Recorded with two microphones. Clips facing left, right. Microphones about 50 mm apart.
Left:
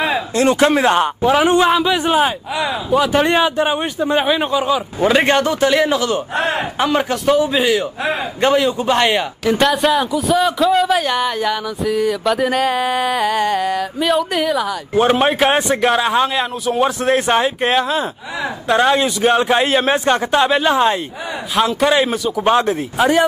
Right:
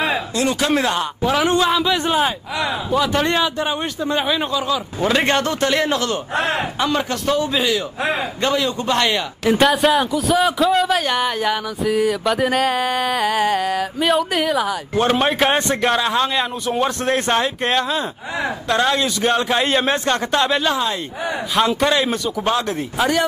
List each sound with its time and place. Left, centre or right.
0.3 s a man's voice: left
1.2 s a man's voice: centre
1.8 s a man's voice: centre
8.4 s a man's voice: left
8.7 s a man's voice: centre
9.5 s speech: centre
15.0 s a man's voice: centre
20.7 s a man's voice: left
21.5 s a man's voice: centre
22.4 s a man's voice: left
22.7 s a man's voice: centre